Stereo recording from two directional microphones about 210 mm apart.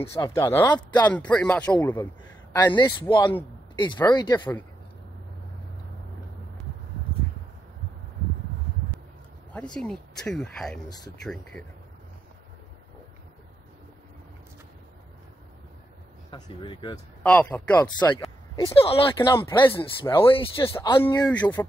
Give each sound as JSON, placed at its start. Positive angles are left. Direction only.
{"t": 0.0, "sound": "speech", "side_deg": 15}
{"t": 9.5, "sound": "speech", "side_deg": 5}
{"t": 16.3, "sound": "speech", "side_deg": 25}
{"t": 17.2, "sound": "speech", "side_deg": 10}
{"t": 17.8, "sound": "speech", "side_deg": 20}
{"t": 21.0, "sound": "speech", "side_deg": 10}